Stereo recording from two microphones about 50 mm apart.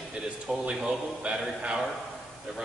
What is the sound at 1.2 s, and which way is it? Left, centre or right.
Speech, right.